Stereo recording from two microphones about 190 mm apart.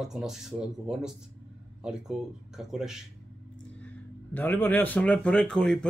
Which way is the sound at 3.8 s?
10° left (ahead or behind).